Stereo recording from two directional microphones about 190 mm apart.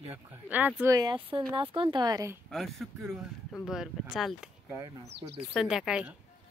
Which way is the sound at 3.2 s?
5° right (ahead or behind).